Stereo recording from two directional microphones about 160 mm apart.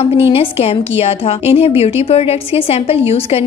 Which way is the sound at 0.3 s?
35° left (ahead or behind).